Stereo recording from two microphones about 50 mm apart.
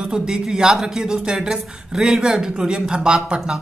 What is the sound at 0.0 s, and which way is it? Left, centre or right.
A woman's voice, centre.